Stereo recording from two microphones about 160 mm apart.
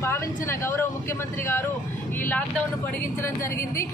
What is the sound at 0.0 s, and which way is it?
Speech, 15° left (ahead or behind).